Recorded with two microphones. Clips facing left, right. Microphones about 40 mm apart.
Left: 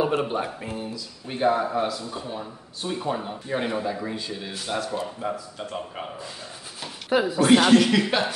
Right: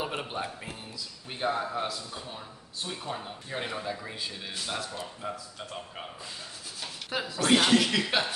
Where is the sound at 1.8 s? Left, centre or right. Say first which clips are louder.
Left 7 dB; centre.